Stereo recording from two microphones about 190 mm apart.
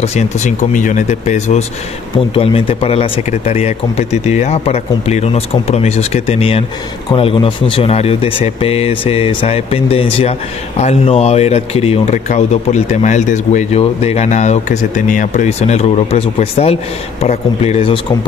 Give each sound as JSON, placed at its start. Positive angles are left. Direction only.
{"t": 0.0, "sound": "speech", "side_deg": 35}